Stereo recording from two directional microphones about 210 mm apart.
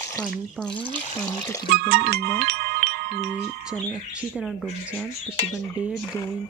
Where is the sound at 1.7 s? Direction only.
50° right (ahead or behind).